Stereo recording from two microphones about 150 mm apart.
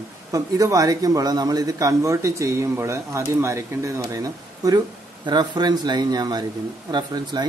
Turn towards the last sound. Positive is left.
turn(degrees=-30)  # may be behind; listen again after turning